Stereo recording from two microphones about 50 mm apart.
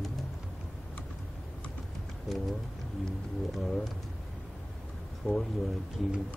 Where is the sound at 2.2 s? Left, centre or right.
Centre.